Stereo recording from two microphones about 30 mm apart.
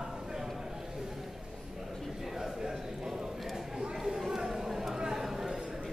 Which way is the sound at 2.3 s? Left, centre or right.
Centre.